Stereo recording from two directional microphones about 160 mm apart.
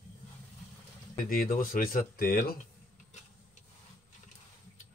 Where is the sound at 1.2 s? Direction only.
65° left (ahead or behind).